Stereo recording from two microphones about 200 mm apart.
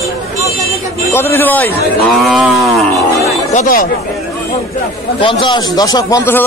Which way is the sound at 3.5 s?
40° left (ahead or behind).